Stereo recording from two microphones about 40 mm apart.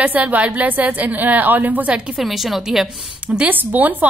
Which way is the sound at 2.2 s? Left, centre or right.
Centre.